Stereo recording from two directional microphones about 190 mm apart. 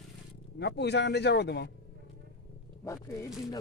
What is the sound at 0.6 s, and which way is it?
Speech, 65° left (ahead or behind).